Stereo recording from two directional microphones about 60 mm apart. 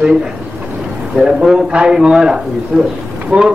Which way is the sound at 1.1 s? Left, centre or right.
Centre.